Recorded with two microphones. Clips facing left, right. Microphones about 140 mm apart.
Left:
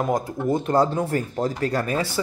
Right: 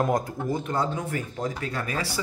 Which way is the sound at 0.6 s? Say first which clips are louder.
Left 7 dB; 40° left (ahead or behind).